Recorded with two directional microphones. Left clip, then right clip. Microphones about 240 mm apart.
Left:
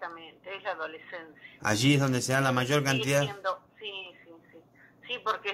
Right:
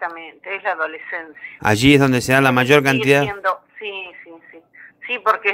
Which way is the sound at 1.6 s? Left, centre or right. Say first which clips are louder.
Right 12 dB; right.